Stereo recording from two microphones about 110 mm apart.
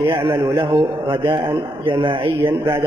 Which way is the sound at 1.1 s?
55° right (ahead or behind).